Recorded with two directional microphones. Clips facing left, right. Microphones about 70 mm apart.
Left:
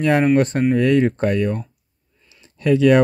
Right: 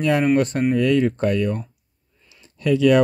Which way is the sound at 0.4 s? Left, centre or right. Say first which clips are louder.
Left 2 dB; left.